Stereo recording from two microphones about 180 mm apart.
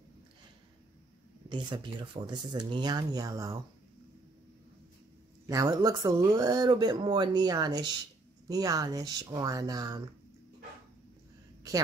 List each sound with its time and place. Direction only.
1.5 s speech: 25° right (ahead or behind)
5.5 s speech: 20° right (ahead or behind)